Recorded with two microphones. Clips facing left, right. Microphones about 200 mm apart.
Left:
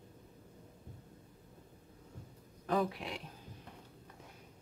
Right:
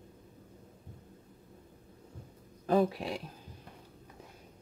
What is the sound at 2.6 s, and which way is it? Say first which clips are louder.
Speech: right 6 dB; 30° right (ahead or behind).